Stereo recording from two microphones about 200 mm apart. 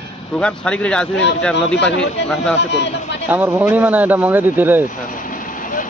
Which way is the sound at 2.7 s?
60° left (ahead or behind).